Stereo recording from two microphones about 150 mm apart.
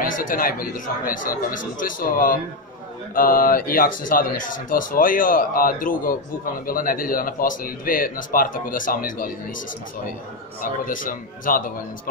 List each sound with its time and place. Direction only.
0.0 s a man's voice: 65° left (ahead or behind)
10.6 s speech: 65° left (ahead or behind)